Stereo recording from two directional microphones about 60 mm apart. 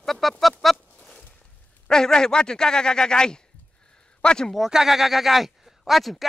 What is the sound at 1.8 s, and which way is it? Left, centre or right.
A man's voice, centre.